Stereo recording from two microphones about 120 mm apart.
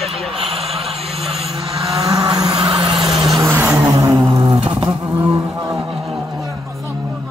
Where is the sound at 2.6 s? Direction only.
45° right (ahead or behind).